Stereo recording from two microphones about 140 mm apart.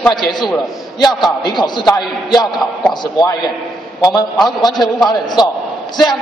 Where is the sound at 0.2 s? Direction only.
30° left (ahead or behind).